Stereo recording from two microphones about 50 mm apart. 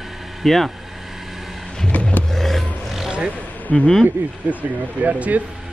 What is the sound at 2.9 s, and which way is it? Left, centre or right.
Vehicle, centre.